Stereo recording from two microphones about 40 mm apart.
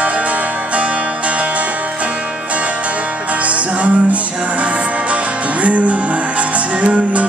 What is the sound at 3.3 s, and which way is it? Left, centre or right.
Music, right.